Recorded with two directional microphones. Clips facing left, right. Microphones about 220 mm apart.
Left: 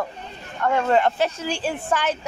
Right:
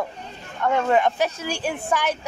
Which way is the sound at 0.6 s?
Centre (ahead or behind).